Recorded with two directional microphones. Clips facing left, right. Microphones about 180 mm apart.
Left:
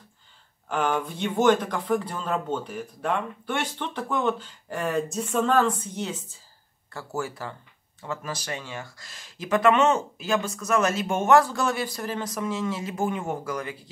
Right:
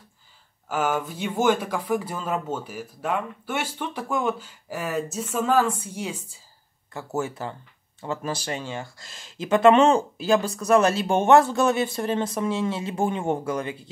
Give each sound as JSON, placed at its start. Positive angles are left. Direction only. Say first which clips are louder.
{"t": 0.7, "sound": "speech", "louder": "right 1 dB", "side_deg": -5}